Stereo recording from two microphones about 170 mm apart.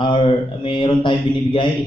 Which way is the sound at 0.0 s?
30° left (ahead or behind).